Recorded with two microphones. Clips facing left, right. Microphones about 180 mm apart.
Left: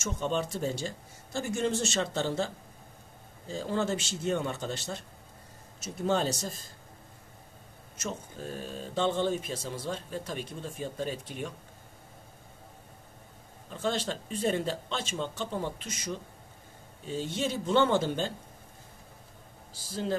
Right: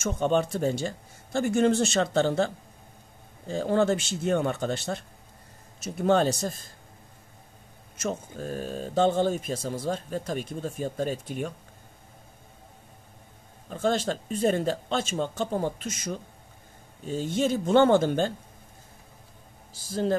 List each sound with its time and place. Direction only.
0.0 s speech: 60° right (ahead or behind)
8.0 s speech: 50° right (ahead or behind)
13.7 s speech: 45° right (ahead or behind)